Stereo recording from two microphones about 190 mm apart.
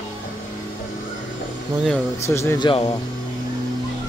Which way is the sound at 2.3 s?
15° left (ahead or behind).